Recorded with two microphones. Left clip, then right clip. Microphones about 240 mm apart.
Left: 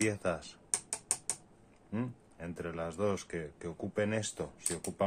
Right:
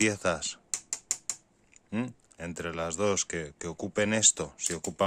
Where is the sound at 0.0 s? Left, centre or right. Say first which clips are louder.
Right 6 dB; right.